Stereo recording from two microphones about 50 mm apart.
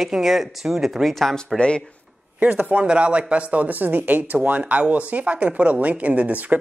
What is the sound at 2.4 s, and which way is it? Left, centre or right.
Speech, right.